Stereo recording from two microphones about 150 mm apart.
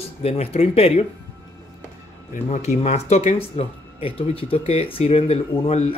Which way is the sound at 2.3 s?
50° left (ahead or behind).